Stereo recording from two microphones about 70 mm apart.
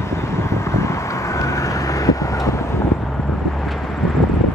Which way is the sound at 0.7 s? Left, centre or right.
Left.